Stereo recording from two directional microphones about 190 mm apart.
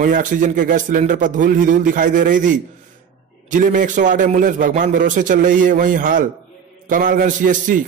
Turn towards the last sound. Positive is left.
turn(degrees=-45)  # may be behind; listen again after turning